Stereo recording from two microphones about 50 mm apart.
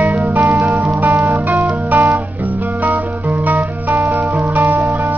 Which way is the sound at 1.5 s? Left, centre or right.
Right.